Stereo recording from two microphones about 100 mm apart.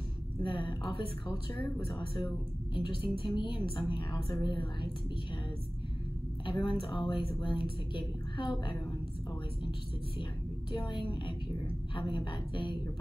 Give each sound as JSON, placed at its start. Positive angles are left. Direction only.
{"t": 0.4, "sound": "a woman's voice", "side_deg": 55}
{"t": 1.9, "sound": "a woman's voice", "side_deg": 55}
{"t": 6.6, "sound": "a woman's voice", "side_deg": 55}
{"t": 10.7, "sound": "a woman's voice", "side_deg": 50}